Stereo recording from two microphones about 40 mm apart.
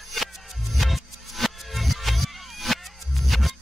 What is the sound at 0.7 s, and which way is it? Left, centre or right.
Music, centre.